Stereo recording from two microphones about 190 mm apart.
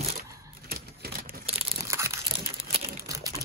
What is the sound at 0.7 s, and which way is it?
Typewriter, 50° right (ahead or behind).